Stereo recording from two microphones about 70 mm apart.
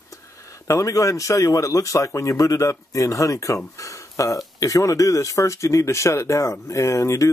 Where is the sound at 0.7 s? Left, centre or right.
Left.